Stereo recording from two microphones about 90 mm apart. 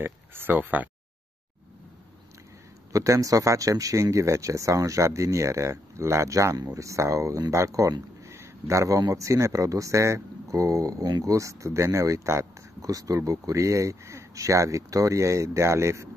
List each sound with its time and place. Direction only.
0.0 s speech: 25° right (ahead or behind)
2.9 s speech: 35° right (ahead or behind)